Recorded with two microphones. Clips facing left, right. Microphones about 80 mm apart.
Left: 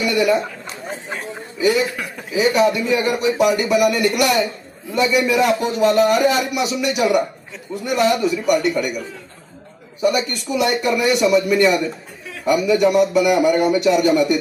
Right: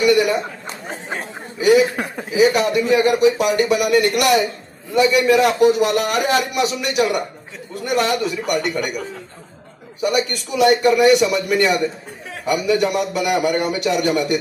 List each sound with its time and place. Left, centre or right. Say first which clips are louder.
0.0 s a man's voice: right 2 dB; centre
1.6 s a man's voice: right 4 dB; centre
1.9 s speech: right 3 dB; right
2.5 s a man's voice: even; centre
10.0 s a man's voice: left 1 dB; centre